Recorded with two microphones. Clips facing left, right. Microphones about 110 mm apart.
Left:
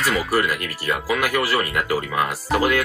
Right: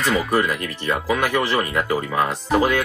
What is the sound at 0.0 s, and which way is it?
Speech, 5° left (ahead or behind).